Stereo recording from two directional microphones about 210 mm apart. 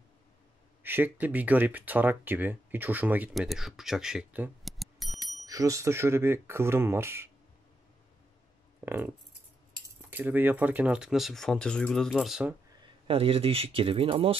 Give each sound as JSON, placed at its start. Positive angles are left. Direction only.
{"t": 0.8, "sound": "speech", "side_deg": -10}
{"t": 5.4, "sound": "speech", "side_deg": -15}
{"t": 8.8, "sound": "speech", "side_deg": -10}
{"t": 13.0, "sound": "speech", "side_deg": -25}